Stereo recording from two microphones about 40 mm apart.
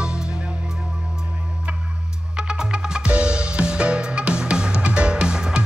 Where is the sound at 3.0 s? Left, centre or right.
Right.